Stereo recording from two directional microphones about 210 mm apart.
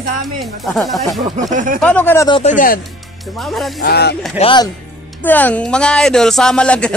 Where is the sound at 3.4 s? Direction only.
Centre (ahead or behind).